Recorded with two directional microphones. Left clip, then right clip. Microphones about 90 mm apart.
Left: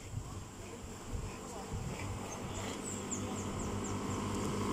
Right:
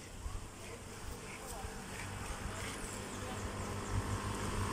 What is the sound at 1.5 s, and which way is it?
Vehicle, 45° left (ahead or behind).